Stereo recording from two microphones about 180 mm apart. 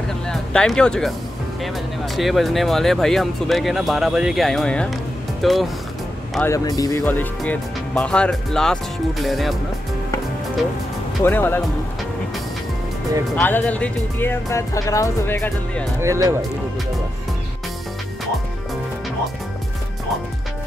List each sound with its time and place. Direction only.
0.3 s speech: 5° left (ahead or behind)
6.4 s speech: 20° left (ahead or behind); by 9.6 s centre (ahead or behind)
11.2 s speech: 10° left (ahead or behind)
13.4 s speech: 10° left (ahead or behind)
16.0 s speech: 15° right (ahead or behind)